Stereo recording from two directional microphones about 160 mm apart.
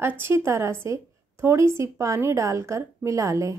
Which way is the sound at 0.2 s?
15° right (ahead or behind).